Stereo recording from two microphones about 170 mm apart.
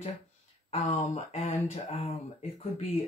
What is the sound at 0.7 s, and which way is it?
Speech, 40° left (ahead or behind).